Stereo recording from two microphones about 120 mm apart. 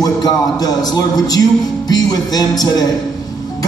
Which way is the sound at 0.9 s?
30° left (ahead or behind).